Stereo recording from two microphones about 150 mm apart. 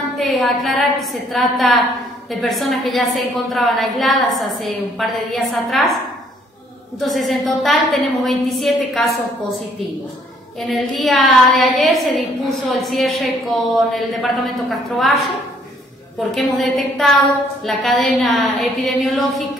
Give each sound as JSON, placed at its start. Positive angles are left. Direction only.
{"t": 0.2, "sound": "a woman's voice", "side_deg": 0}
{"t": 7.0, "sound": "a woman's voice", "side_deg": 0}
{"t": 10.6, "sound": "a woman's voice", "side_deg": 0}
{"t": 16.2, "sound": "a woman's voice", "side_deg": 0}